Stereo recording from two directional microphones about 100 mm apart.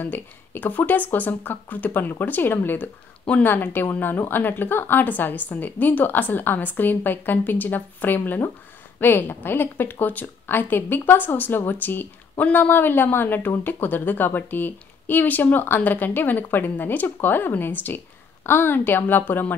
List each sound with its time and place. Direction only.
0.0 s a woman's voice: 20° left (ahead or behind)